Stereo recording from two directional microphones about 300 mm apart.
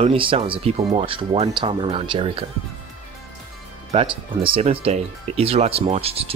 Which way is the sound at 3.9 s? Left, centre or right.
Centre.